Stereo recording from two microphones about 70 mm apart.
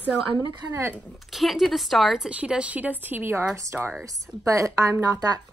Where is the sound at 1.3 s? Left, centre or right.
Centre; by 3.3 s right.